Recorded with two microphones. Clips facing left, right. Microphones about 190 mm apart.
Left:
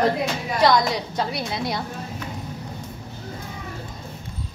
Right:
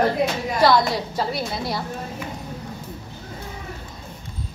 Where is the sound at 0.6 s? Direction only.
5° right (ahead or behind).